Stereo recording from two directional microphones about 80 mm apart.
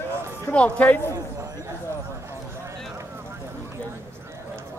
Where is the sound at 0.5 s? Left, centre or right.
Centre.